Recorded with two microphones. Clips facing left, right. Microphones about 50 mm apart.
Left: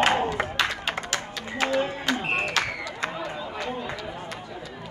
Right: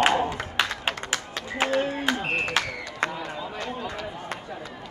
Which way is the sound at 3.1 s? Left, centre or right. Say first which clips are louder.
Left 1 dB; left.